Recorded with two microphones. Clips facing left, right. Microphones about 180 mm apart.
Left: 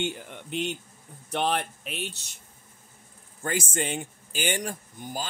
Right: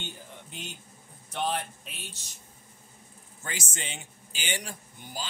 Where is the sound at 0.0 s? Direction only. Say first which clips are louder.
Left 11 dB; 70° left (ahead or behind).